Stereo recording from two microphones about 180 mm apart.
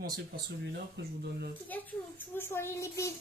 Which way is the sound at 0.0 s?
60° right (ahead or behind).